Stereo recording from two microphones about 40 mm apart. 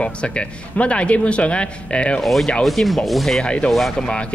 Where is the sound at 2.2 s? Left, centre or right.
Centre.